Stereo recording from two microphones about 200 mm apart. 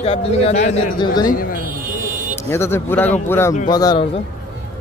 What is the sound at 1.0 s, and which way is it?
Speech, 20° left (ahead or behind).